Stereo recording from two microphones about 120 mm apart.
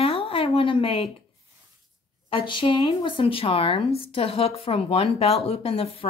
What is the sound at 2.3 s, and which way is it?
Speech, 45° left (ahead or behind).